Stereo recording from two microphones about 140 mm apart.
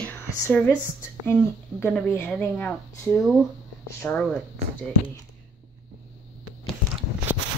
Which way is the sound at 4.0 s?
10° left (ahead or behind).